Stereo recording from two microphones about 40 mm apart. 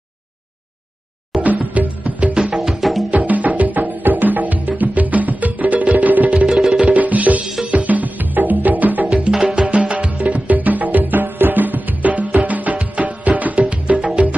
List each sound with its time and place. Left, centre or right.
1.4 s music: right
2.5 s music: centre
3.1 s music: right
6.4 s music: centre
6.8 s music: right
9.4 s music: right